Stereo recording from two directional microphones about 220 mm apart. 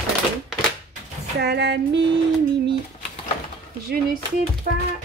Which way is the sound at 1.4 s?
50° right (ahead or behind).